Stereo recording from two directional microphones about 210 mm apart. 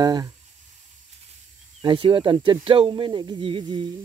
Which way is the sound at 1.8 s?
25° right (ahead or behind).